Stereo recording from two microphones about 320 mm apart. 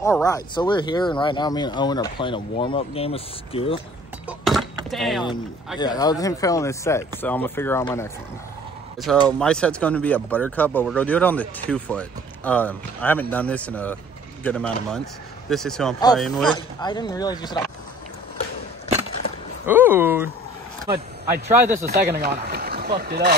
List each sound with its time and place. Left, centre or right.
0.2 s speech: centre
4.3 s keys jangling: centre
4.9 s speech: centre
5.8 s speech: centre
16.5 s speech: centre
19.6 s speech: centre
21.3 s speech: centre
21.8 s speech: right